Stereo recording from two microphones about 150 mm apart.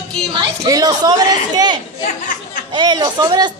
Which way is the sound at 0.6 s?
25° right (ahead or behind).